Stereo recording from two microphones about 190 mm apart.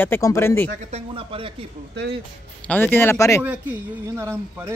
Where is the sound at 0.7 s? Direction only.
35° right (ahead or behind).